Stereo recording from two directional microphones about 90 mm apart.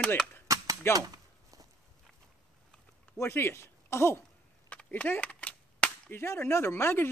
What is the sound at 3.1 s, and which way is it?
Speech, 30° left (ahead or behind).